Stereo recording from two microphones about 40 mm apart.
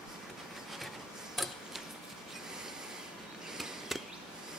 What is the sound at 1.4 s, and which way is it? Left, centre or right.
Tick-tock, centre.